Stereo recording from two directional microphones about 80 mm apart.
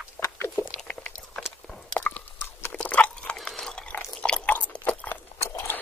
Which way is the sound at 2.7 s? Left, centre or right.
Centre.